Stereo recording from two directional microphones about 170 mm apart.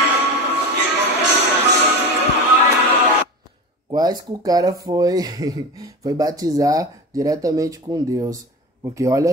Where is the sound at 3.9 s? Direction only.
20° right (ahead or behind).